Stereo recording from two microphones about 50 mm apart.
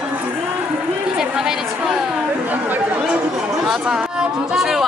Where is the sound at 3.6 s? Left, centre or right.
Centre.